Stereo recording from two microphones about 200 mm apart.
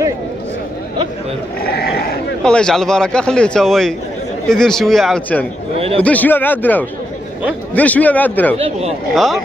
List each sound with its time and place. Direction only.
1.6 s a sound: 50° left (ahead or behind)
2.4 s speech: 5° left (ahead or behind)
8.5 s speech: 30° right (ahead or behind)
9.1 s speech: centre (ahead or behind)